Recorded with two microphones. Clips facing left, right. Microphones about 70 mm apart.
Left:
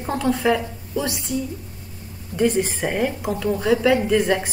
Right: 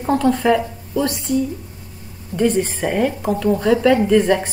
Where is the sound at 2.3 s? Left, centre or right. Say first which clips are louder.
Right 2 dB; centre.